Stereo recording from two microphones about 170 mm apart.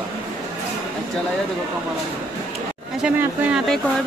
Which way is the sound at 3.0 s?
5° right (ahead or behind).